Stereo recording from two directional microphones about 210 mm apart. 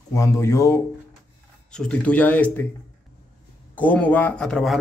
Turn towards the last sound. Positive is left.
turn(degrees=5)  # may be behind; listen again after turning